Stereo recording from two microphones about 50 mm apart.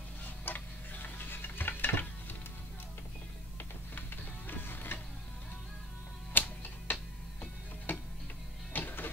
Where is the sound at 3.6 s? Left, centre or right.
Left.